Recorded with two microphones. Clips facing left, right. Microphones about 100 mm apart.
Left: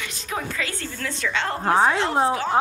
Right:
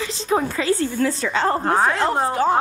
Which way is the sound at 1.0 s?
35° right (ahead or behind).